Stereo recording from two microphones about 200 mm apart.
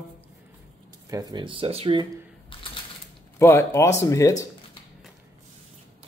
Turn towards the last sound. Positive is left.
turn(degrees=15)  # may be behind; listen again after turning